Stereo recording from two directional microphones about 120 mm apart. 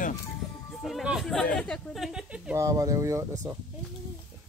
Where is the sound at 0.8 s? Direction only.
Centre (ahead or behind).